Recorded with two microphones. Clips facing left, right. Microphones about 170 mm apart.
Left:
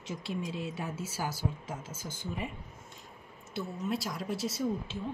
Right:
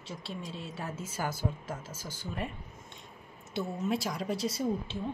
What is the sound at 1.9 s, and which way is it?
Speech, 35° right (ahead or behind).